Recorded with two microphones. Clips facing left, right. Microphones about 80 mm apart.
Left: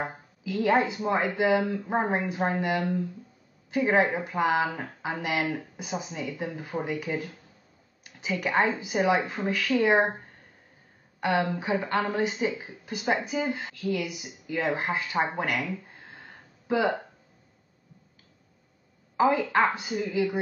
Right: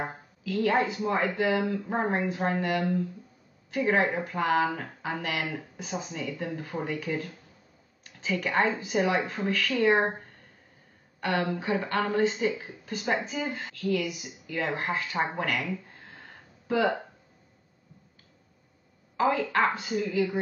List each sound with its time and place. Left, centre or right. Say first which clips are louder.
0.4 s speech: left 2 dB; centre
4.0 s speech: left 2 dB; centre
11.1 s a woman's voice: left 2 dB; centre
15.3 s a sound: left 1 dB; centre
19.4 s speech: left 2 dB; centre
19.7 s speech: even; centre